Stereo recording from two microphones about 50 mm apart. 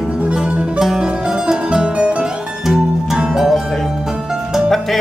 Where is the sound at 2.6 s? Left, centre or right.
Centre.